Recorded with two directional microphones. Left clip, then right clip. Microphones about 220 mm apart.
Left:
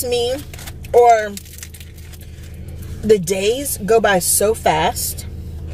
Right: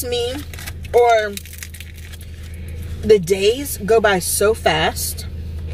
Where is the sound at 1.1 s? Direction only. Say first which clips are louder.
Left 2 dB; 20° left (ahead or behind).